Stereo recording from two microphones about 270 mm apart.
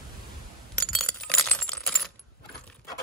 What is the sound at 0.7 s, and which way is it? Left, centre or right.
Keys jangling, centre.